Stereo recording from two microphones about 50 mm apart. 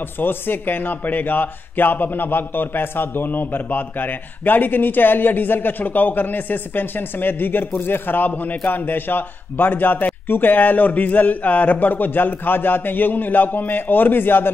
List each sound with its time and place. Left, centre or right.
0.2 s a man's voice: left